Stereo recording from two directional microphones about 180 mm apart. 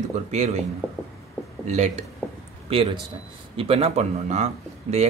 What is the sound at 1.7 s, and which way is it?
Speech, 40° right (ahead or behind).